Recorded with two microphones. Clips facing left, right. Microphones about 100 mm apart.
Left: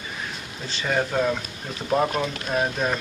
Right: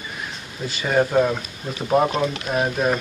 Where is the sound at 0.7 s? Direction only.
10° right (ahead or behind).